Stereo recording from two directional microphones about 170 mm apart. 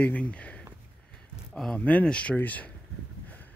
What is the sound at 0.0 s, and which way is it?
Speech, 10° left (ahead or behind).